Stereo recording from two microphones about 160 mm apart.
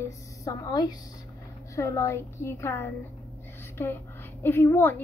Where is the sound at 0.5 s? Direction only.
20° left (ahead or behind).